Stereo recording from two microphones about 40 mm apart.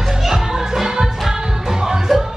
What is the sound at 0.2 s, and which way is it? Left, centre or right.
Music, centre.